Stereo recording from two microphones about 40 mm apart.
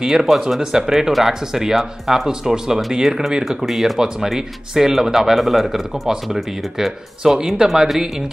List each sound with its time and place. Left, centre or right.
0.0 s a man's voice: centre
7.3 s a man's voice: centre